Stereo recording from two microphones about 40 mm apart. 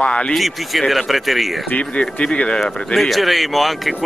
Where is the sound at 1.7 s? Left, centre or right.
Left.